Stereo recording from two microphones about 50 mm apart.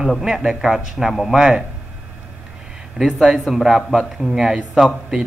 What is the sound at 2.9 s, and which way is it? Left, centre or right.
A man's voice, centre.